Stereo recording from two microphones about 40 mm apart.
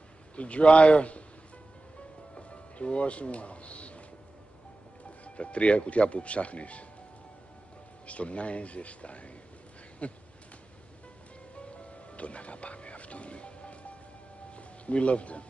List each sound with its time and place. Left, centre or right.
0.4 s a man's voice: left
2.3 s speech: left
5.2 s speech: left
8.1 s speech: left
11.5 s music: left